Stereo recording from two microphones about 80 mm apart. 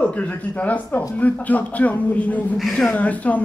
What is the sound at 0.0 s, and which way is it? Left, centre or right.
Speech, centre.